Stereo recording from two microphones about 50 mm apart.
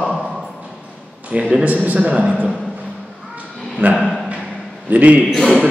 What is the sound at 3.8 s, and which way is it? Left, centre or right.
A man's voice, right.